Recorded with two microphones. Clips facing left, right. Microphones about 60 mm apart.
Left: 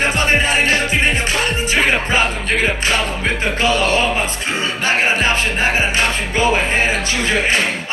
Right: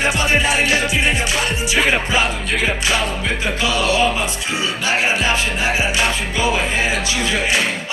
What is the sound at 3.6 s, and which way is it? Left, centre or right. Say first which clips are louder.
Music: left 1 dB; left.